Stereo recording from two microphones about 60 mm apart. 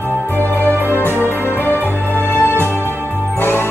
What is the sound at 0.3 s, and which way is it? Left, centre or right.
Music, left.